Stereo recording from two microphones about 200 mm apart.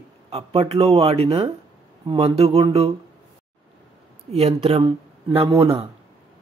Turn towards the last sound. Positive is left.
turn(degrees=-30)  # may be behind; listen again after turning